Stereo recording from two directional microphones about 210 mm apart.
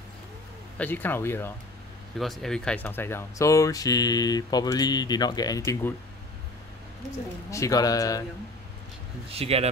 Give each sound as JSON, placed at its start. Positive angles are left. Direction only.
{"t": 0.7, "sound": "speech", "side_deg": 10}
{"t": 2.1, "sound": "speech", "side_deg": 0}
{"t": 7.5, "sound": "speech", "side_deg": 15}
{"t": 9.3, "sound": "speech", "side_deg": -30}